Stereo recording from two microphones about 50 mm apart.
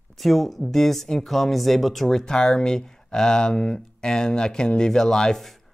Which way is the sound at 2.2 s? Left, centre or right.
Centre.